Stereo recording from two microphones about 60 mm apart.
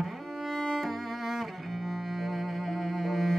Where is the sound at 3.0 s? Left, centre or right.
Centre.